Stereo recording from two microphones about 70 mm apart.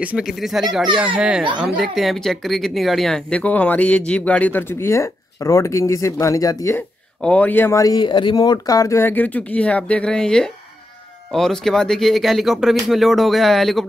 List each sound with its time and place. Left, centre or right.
0.2 s speech: centre
1.0 s a child's voice: centre
1.6 s speech: centre
3.3 s speech: centre
4.6 s speech: left
7.2 s speech: centre
7.4 s speech: left
7.7 s speech: left
8.0 s speech: left
9.0 s speech: left; by 13.8 s centre